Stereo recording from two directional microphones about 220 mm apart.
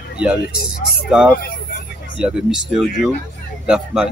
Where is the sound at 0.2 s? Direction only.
5° right (ahead or behind).